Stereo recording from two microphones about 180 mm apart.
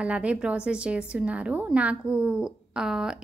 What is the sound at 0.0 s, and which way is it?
A woman's voice, 5° right (ahead or behind).